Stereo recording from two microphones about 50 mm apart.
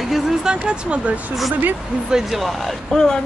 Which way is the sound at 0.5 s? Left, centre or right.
Centre.